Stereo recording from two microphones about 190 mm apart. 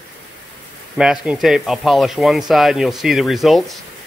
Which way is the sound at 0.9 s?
5° right (ahead or behind).